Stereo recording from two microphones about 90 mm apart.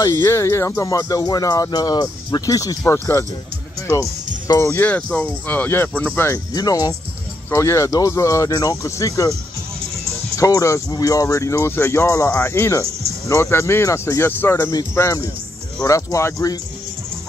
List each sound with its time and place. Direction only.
0.0 s speech: 30° left (ahead or behind)
4.6 s speech: 20° left (ahead or behind)
6.5 s speech: 45° left (ahead or behind)
7.5 s speech: 30° left (ahead or behind)
10.3 s speech: 40° left (ahead or behind)